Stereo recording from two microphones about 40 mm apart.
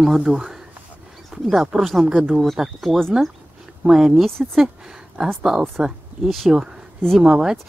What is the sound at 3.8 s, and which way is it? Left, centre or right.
Speech, centre.